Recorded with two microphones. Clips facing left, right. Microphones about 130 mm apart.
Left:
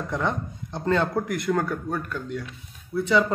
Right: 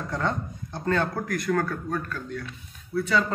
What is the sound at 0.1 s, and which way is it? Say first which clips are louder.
A man's voice: left 1 dB; 15° left (ahead or behind).